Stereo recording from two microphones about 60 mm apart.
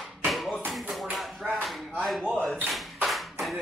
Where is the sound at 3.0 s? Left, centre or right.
Centre.